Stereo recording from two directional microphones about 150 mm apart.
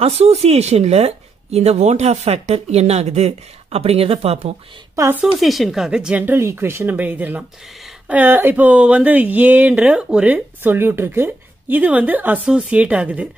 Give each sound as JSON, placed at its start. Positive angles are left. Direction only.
{"t": 0.0, "sound": "speech", "side_deg": -45}
{"t": 4.9, "sound": "a woman's voice", "side_deg": -20}
{"t": 5.4, "sound": "speech", "side_deg": 0}